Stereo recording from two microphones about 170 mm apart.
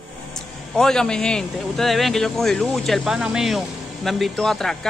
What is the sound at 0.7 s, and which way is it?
Speech, 5° left (ahead or behind).